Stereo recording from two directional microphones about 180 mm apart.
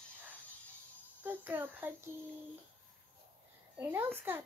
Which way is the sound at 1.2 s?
10° right (ahead or behind).